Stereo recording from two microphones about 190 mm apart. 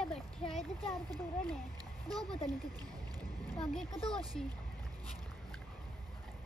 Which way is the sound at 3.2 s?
20° right (ahead or behind).